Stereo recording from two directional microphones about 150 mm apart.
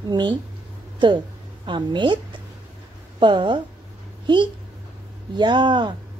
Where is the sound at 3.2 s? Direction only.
30° right (ahead or behind).